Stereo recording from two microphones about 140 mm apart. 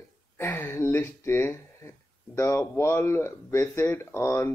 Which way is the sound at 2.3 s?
20° left (ahead or behind).